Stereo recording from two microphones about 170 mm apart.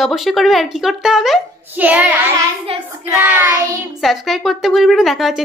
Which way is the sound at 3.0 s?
10° right (ahead or behind).